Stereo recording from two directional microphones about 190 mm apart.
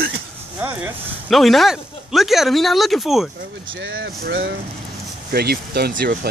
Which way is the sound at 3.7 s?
90° right.